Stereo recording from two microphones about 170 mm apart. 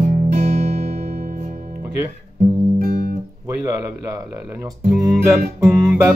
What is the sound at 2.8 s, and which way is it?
Guitar, 55° right (ahead or behind).